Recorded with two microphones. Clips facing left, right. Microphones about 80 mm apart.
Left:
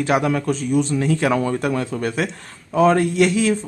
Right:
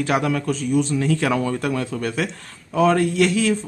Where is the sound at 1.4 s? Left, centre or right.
Left.